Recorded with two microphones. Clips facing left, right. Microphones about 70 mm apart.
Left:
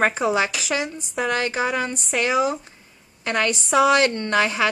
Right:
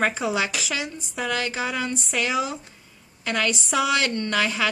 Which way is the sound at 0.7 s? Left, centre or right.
Left.